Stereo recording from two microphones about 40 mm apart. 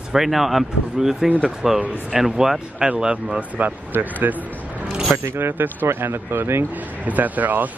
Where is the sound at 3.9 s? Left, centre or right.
Right.